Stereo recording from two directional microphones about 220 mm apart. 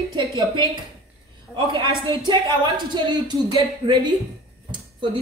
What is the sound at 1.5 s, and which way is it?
Speech, 20° right (ahead or behind).